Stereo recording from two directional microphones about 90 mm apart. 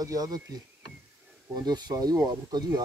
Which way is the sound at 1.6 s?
50° right (ahead or behind).